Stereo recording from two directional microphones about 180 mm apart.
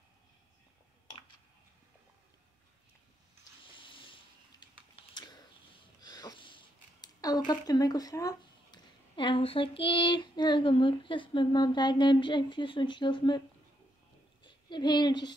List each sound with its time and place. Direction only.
3.7 s a sound: 25° left (ahead or behind)
5.9 s speech: 20° left (ahead or behind)
14.4 s speech: 25° left (ahead or behind)